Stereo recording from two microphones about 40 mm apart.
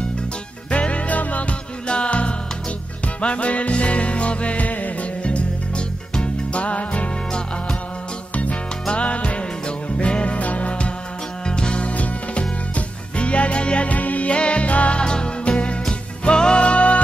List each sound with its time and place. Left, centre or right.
0.7 s music: left
1.9 s music: left
5.2 s music: left
8.9 s music: left
15.0 s music: left